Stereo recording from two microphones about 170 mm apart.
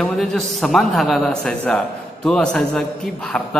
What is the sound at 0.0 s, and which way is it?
A man's voice, centre (ahead or behind).